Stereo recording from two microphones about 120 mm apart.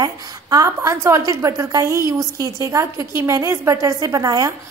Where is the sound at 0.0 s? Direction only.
30° right (ahead or behind).